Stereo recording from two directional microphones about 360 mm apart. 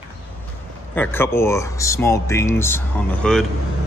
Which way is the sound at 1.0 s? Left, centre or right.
Centre.